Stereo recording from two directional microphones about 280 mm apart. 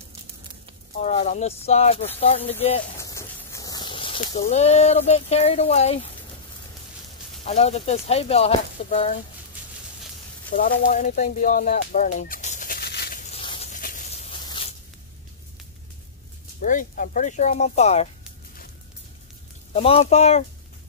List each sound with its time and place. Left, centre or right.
1.0 s speech: left
7.4 s speech: left
10.5 s fowl: left
16.6 s speech: left
19.7 s speech: left